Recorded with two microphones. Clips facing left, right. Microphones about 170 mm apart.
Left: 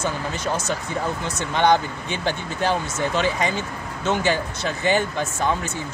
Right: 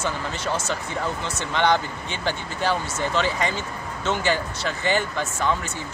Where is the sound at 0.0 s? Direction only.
15° left (ahead or behind).